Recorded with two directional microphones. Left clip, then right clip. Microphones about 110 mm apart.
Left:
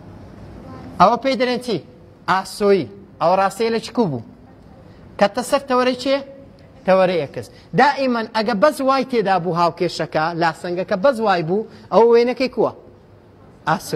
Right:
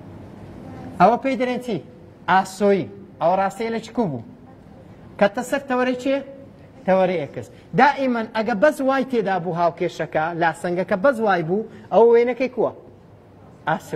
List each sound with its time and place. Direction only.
0.9 s a man's voice: 40° left (ahead or behind)
5.1 s a man's voice: 45° left (ahead or behind)
7.7 s a man's voice: 30° left (ahead or behind)
10.6 s speech: 15° left (ahead or behind)
11.0 s a man's voice: 30° left (ahead or behind)
12.1 s a man's voice: 40° left (ahead or behind)
13.7 s a man's voice: 35° left (ahead or behind)